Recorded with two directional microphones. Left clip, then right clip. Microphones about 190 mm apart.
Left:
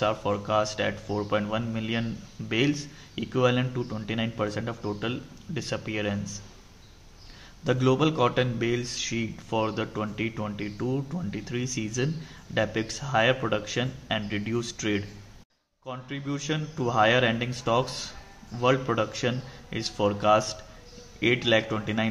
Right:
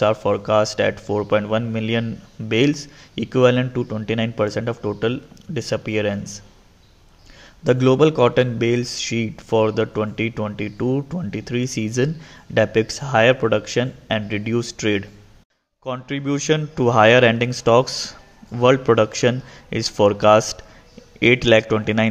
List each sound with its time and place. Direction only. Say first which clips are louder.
0.0 s speech: right 8 dB; 35° right (ahead or behind)
7.6 s a man's voice: right 9 dB; 35° right (ahead or behind)